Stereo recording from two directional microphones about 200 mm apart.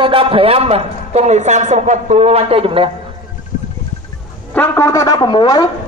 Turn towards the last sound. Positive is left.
turn(degrees=20)  # may be behind; listen again after turning